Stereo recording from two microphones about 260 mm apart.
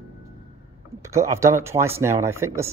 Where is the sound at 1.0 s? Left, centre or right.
Centre.